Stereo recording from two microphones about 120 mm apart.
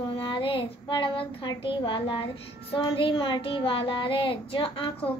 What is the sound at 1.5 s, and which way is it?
A child's voice, 45° left (ahead or behind).